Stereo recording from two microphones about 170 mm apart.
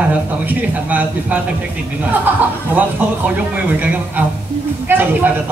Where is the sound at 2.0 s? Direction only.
10° right (ahead or behind).